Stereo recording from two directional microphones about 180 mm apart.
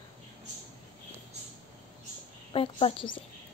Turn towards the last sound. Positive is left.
turn(degrees=30)  # may be behind; listen again after turning